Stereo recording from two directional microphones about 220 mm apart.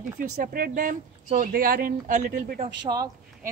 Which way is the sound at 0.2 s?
40° right (ahead or behind).